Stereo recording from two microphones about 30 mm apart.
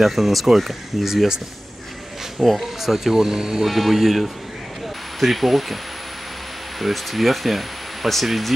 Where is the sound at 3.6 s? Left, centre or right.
Centre.